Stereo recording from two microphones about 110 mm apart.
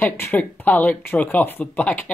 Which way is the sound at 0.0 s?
15° left (ahead or behind).